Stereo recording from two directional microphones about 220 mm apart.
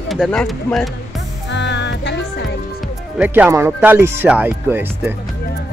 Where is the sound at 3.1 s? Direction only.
5° right (ahead or behind).